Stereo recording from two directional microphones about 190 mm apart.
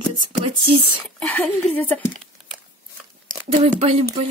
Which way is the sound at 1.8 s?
10° left (ahead or behind).